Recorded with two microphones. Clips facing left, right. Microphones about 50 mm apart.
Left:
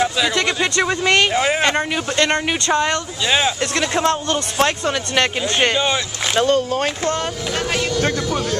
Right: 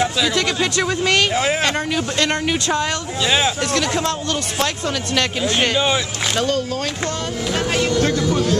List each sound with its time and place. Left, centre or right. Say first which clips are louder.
0.0 s speech: left 1 dB; centre
1.3 s speech: left 1 dB; centre
1.6 s speech: left 1 dB; centre
3.3 s speech: even; centre
3.7 s speech: left 2 dB; left
6.4 s speech: left 6 dB; left
7.5 s speech: right 2 dB; centre
8.0 s speech: right 2 dB; centre